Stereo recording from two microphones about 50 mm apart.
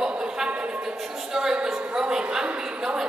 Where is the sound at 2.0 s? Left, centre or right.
Centre.